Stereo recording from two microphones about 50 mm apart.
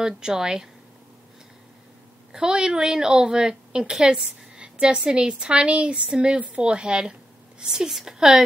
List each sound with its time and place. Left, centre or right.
0.0 s a woman's voice: centre
2.3 s a woman's voice: centre